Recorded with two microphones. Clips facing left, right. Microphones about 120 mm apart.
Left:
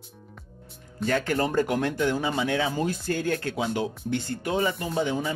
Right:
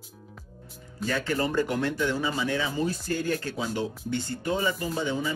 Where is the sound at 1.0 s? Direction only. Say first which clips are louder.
Left 3 dB; 55° left (ahead or behind); by 3.8 s 70° left (ahead or behind).